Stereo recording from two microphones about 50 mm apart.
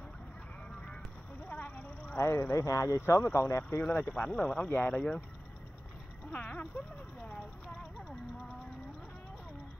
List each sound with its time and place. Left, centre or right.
1.5 s a sound: left
2.1 s speech: left
2.5 s speech: left
3.3 s speech: left
4.1 s speech: left
4.9 s speech: centre
6.3 s speech: left